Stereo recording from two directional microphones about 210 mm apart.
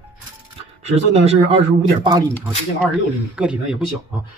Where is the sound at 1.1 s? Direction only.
30° right (ahead or behind).